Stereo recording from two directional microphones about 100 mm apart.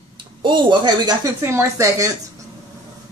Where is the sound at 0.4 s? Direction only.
50° right (ahead or behind).